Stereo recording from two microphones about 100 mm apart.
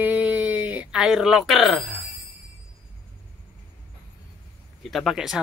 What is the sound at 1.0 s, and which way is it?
Speech, 5° right (ahead or behind).